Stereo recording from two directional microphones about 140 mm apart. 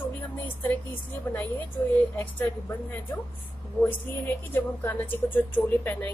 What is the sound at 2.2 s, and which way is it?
A woman's voice, 15° left (ahead or behind).